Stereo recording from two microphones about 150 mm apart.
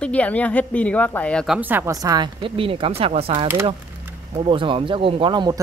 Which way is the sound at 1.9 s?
25° right (ahead or behind).